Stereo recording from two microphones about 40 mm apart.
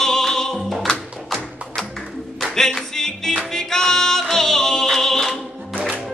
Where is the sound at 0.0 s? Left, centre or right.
Centre.